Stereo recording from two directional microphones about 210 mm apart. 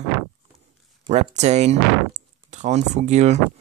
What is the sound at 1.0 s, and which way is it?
Speech, 30° right (ahead or behind).